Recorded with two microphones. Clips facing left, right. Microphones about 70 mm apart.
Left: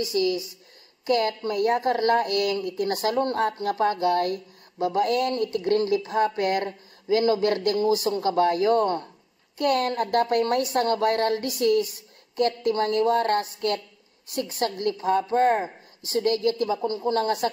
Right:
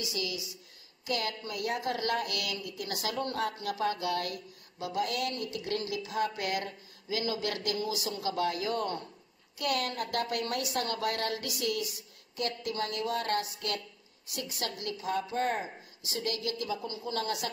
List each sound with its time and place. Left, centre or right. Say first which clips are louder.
0.0 s a woman's voice: left 12 dB; left